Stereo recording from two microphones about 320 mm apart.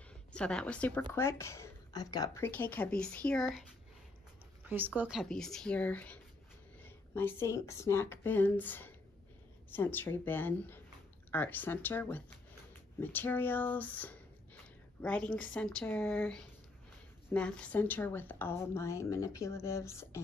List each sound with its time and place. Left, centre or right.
0.3 s a woman's voice: centre
4.6 s a woman's voice: centre